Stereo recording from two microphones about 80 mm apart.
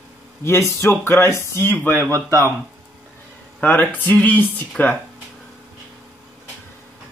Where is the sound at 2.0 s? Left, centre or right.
Right.